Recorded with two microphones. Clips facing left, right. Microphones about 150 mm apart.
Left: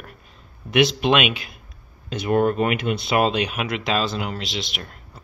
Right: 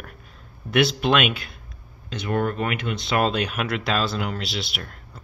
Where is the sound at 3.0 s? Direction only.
10° left (ahead or behind).